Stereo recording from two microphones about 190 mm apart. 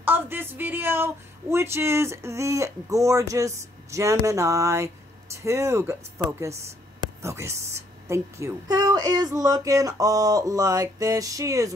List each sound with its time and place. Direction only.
0.0 s speech: 10° right (ahead or behind)